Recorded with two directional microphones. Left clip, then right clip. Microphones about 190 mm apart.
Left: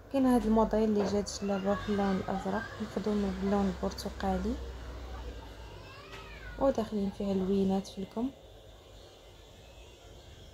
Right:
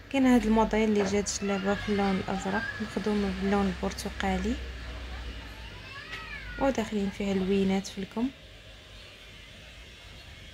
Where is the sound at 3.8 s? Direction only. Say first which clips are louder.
Right 2 dB; 15° right (ahead or behind).